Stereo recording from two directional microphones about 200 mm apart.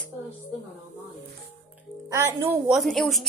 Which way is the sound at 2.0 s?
15° right (ahead or behind).